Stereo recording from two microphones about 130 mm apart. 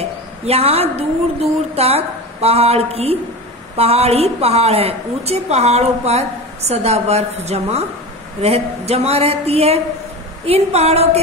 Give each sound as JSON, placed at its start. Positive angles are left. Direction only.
{"t": 0.5, "sound": "a woman's voice", "side_deg": -50}